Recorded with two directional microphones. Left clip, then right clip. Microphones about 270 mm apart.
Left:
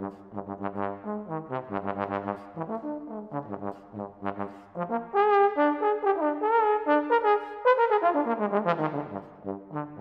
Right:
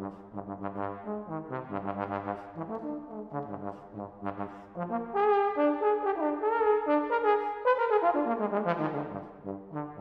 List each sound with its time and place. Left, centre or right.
0.0 s brass instrument: left